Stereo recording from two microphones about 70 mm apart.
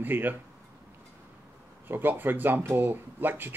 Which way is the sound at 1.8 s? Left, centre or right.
Right.